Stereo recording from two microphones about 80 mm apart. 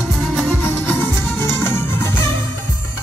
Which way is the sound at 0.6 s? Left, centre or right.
Left.